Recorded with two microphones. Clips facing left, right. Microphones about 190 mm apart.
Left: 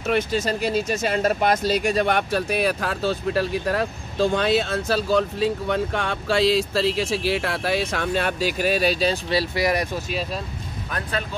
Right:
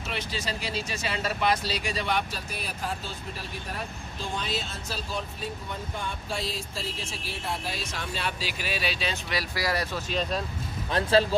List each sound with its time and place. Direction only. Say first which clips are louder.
0.0 s speech: left 11 dB; 50° left (ahead or behind); by 9.8 s 20° left (ahead or behind)
10.9 s speech: right 7 dB; 30° right (ahead or behind)